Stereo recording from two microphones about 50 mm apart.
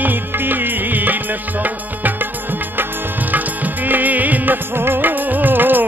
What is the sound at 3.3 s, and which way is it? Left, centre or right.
Music, right.